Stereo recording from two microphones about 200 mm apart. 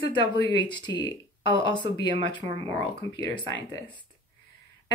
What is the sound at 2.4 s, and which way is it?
Speech, 25° right (ahead or behind).